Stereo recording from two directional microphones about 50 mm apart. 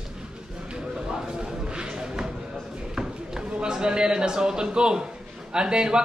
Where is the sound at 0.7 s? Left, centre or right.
Centre.